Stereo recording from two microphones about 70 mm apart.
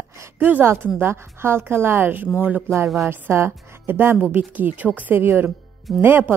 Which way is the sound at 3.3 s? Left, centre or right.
Right.